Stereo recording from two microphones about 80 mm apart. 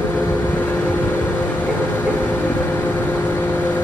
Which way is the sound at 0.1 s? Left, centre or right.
Left.